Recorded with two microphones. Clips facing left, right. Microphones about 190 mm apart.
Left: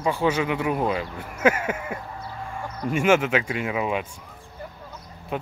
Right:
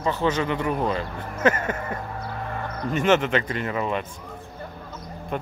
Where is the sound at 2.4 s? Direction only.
60° right (ahead or behind).